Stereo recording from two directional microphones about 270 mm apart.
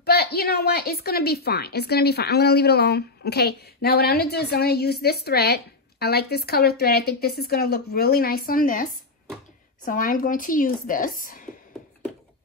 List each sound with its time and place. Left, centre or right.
0.0 s a woman's voice: left
9.8 s a woman's voice: left